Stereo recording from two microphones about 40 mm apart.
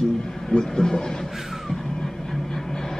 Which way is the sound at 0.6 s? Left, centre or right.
Centre.